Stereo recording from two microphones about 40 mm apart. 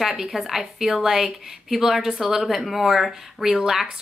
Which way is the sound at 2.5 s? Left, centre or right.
Centre.